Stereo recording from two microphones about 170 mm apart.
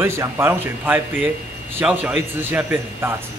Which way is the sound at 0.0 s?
15° right (ahead or behind).